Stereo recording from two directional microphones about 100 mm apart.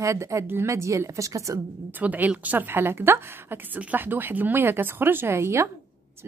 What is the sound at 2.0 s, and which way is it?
A woman's voice, 15° right (ahead or behind).